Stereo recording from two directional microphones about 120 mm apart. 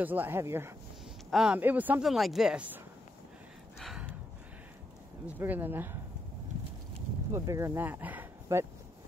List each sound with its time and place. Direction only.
0.0 s speech: 15° right (ahead or behind)
1.3 s speech: 5° right (ahead or behind)
2.0 s speech: centre (ahead or behind)
5.2 s speech: 15° right (ahead or behind)
7.3 s speech: 25° right (ahead or behind)